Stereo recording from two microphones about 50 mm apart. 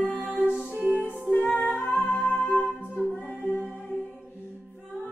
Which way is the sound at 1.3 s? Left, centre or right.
Left.